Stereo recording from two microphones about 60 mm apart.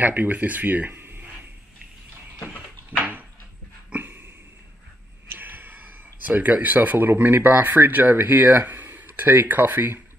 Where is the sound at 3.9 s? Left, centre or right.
Right.